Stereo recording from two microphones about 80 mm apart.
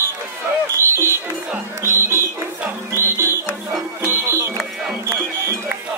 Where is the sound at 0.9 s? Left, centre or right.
Right.